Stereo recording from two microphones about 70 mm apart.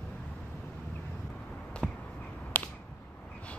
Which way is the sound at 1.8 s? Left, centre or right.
Centre.